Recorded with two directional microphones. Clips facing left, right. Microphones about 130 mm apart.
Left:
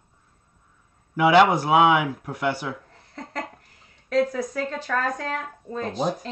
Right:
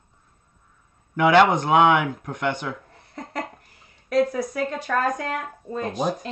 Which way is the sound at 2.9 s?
10° right (ahead or behind).